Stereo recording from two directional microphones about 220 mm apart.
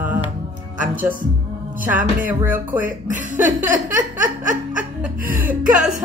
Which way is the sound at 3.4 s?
35° right (ahead or behind).